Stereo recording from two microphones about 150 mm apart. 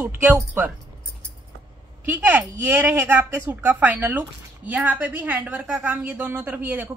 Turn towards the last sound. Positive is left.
turn(degrees=-10)  # may be behind; listen again after turning